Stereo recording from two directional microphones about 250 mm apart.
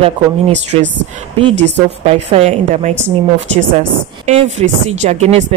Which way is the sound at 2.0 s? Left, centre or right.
Right.